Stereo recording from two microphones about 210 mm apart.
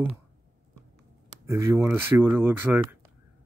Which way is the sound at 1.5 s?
10° right (ahead or behind).